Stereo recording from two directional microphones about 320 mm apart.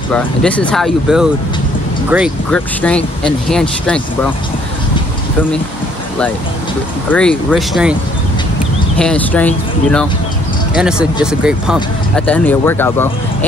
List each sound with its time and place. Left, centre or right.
0.1 s speech: centre
7.1 s speech: centre
8.9 s speech: centre